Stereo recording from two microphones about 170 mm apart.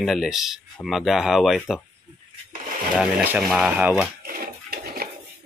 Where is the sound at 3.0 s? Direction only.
5° right (ahead or behind).